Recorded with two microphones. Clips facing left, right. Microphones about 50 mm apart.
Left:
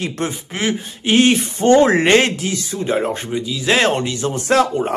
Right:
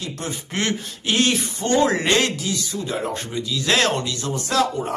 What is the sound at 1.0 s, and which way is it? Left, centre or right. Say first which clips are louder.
Speech: left 6 dB; left.